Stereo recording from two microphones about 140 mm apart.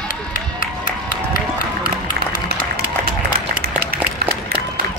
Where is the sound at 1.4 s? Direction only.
85° left.